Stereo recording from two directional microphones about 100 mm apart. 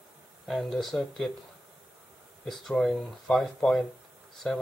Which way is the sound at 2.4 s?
Centre (ahead or behind).